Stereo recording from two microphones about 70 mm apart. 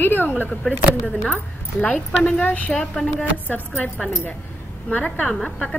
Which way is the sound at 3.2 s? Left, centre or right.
Left.